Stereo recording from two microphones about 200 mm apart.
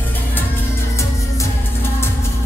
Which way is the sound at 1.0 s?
15° left (ahead or behind).